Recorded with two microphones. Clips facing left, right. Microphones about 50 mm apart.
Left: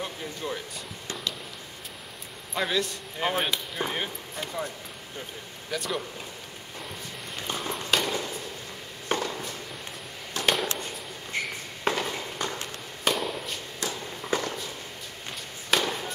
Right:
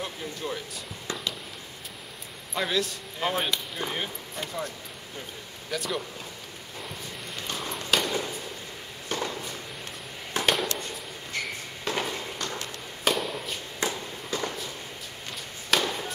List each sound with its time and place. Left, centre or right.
0.0 s speech: centre
2.5 s speech: centre
5.7 s speech: centre
7.5 s a sound: centre
9.3 s walk: centre
10.4 s a sound: centre
11.3 s a sound: left
11.9 s walk: left
12.4 s a sound: centre
13.0 s chop: centre
13.8 s walk: right
14.3 s walk: left
15.7 s chop: centre